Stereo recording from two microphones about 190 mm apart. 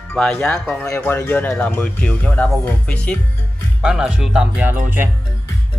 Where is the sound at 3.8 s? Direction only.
5° right (ahead or behind).